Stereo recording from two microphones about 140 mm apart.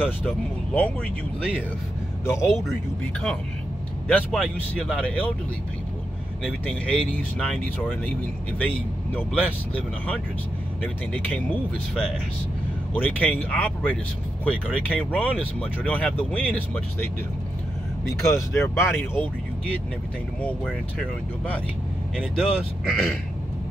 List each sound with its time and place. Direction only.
0.0 s speech: 10° left (ahead or behind)
2.2 s speech: 20° left (ahead or behind)
4.1 s speech: 10° left (ahead or behind)
6.4 s speech: 5° left (ahead or behind)
9.1 s speech: 10° left (ahead or behind)
18.2 s speech: 20° left (ahead or behind)
20.4 s speech: 10° left (ahead or behind)